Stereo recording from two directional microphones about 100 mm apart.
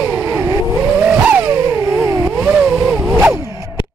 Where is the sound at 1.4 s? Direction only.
30° right (ahead or behind).